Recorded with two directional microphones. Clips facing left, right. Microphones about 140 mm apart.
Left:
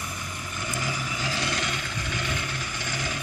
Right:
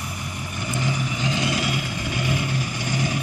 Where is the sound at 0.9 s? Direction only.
Centre (ahead or behind); by 3.2 s 15° right (ahead or behind).